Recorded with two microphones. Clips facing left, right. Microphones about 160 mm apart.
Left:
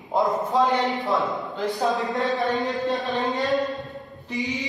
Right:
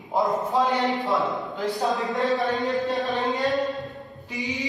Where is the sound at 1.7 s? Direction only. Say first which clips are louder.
Left 1 dB; centre (ahead or behind).